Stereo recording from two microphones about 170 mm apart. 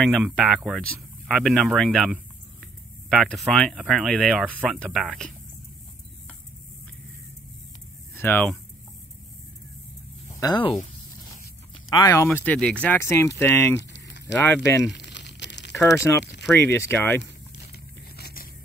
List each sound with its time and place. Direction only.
0.0 s speech: centre (ahead or behind)
4.5 s speech: 10° right (ahead or behind)
4.7 s speech: centre (ahead or behind)
8.2 s speech: 10° left (ahead or behind)
10.2 s speech: 25° left (ahead or behind)
12.1 s speech: 15° left (ahead or behind)
13.7 s a sound: 90° left
14.2 s speech: 15° left (ahead or behind)
14.9 s crumpling: 90° left
15.9 s speech: 15° left (ahead or behind)
18.1 s biting: 65° left (ahead or behind)